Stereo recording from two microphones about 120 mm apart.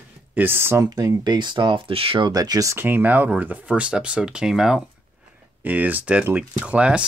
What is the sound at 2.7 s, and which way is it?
Speech, 15° right (ahead or behind).